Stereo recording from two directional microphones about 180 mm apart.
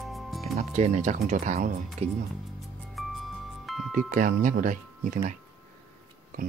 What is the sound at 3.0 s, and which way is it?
Music, centre (ahead or behind).